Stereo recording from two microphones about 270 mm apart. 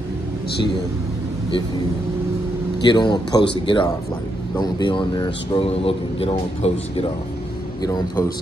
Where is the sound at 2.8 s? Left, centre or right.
Centre.